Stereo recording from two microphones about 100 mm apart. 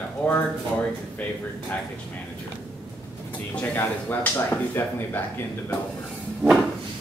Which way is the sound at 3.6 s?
15° left (ahead or behind).